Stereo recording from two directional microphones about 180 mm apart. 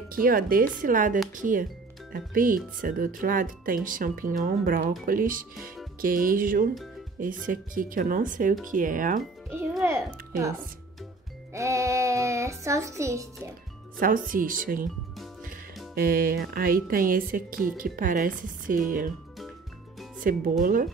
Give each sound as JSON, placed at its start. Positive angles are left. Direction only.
{"t": 0.1, "sound": "speech", "side_deg": -55}
{"t": 9.6, "sound": "music", "side_deg": -10}
{"t": 11.5, "sound": "a child's voice", "side_deg": -15}
{"t": 13.9, "sound": "speech", "side_deg": -50}
{"t": 15.9, "sound": "speech", "side_deg": -55}
{"t": 20.2, "sound": "speech", "side_deg": -50}